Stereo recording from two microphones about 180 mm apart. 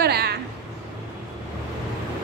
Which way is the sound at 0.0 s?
65° right (ahead or behind).